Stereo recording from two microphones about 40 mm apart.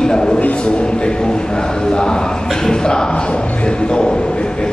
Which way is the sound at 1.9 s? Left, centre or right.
Left.